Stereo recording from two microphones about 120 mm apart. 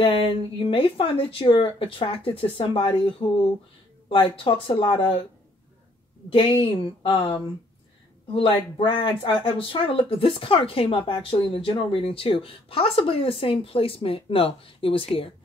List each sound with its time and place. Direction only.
0.0 s speech: 50° left (ahead or behind)
6.3 s speech: 50° left (ahead or behind)